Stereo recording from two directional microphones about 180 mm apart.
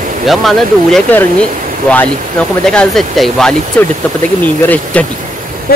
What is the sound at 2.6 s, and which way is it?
Speech, 5° left (ahead or behind).